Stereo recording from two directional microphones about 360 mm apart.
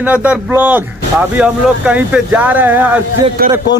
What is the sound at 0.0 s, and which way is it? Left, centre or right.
Speech, centre.